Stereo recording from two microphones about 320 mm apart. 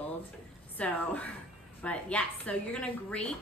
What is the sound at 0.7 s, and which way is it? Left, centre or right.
A woman's voice, centre.